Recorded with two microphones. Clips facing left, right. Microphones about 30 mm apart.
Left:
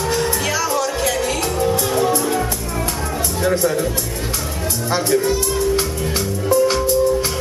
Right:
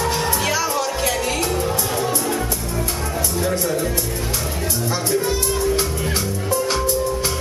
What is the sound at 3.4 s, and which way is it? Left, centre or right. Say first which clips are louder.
Speech: left 5 dB; centre.